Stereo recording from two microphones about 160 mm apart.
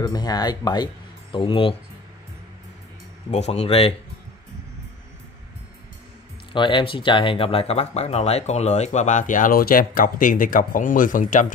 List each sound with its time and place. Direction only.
0.0 s speech: 25° left (ahead or behind)
3.3 s speech: 45° left (ahead or behind)
6.5 s speech: 30° left (ahead or behind); by 11.4 s 55° left (ahead or behind)